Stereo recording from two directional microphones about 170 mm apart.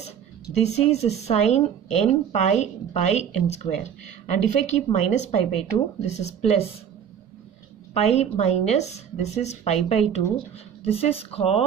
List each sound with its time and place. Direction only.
0.6 s a woman's voice: 40° left (ahead or behind)
7.9 s a woman's voice: 40° left (ahead or behind)